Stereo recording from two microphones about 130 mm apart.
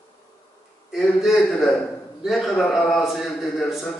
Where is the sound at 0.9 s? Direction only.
Centre (ahead or behind).